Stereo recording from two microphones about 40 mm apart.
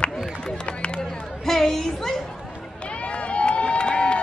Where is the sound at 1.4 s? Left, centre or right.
Centre.